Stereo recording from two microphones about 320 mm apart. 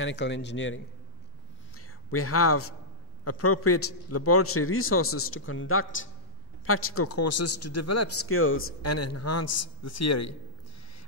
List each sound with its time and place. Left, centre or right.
0.0 s a man's voice: left